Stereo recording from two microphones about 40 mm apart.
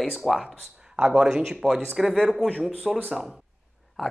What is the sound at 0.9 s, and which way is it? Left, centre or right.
Speech, centre.